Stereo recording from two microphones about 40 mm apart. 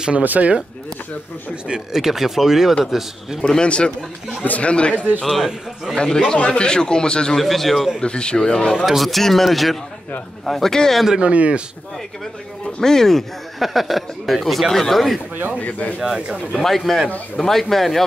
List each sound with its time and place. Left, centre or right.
0.2 s speech: right
1.7 s speech: centre
3.3 s speech: centre
3.6 s a man's voice: left
4.9 s a man's voice: right
5.3 s speech: centre
6.3 s a man's voice: left
7.3 s speech: centre
8.0 s a man's voice: left
8.8 s speech: centre
11.1 s speech: right
12.8 s speech: centre
13.6 s speech: centre
16.3 s speech: centre